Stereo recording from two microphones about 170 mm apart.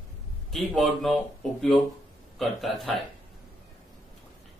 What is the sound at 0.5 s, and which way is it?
A man's voice, centre (ahead or behind).